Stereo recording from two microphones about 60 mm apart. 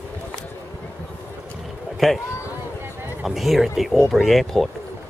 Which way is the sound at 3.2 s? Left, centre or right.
Centre.